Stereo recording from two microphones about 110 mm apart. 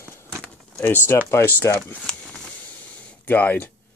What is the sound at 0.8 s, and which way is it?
Speech, 20° left (ahead or behind).